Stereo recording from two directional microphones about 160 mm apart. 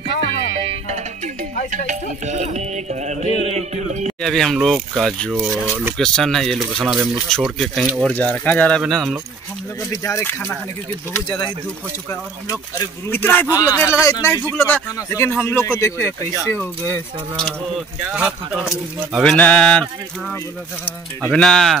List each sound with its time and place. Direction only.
0.7 s speech: 45° right (ahead or behind)
3.4 s music: 45° right (ahead or behind)
4.2 s speech: centre (ahead or behind)
5.9 s speech: 5° left (ahead or behind)
9.8 s speech: 20° left (ahead or behind)
12.1 s speech: 20° left (ahead or behind)
17.4 s speech: 5° left (ahead or behind)
19.3 s speech: 10° left (ahead or behind)